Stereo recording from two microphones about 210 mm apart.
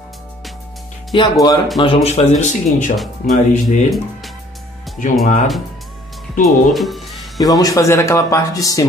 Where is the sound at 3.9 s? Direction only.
Centre (ahead or behind).